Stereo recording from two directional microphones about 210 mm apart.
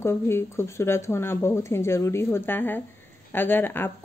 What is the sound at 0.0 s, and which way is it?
Speech, 10° left (ahead or behind).